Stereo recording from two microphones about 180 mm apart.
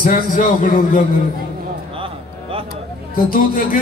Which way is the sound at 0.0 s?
50° left (ahead or behind).